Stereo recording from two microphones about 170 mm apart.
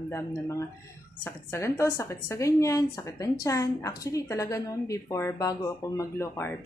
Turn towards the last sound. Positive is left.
turn(degrees=15)  # may be behind; listen again after turning